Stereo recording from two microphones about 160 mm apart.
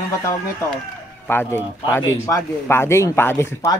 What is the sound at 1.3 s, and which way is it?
Speech, 15° left (ahead or behind).